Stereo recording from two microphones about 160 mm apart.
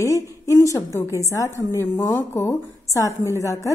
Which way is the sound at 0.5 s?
15° left (ahead or behind).